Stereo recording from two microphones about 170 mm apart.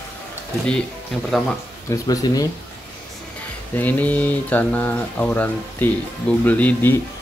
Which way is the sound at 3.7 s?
10° left (ahead or behind).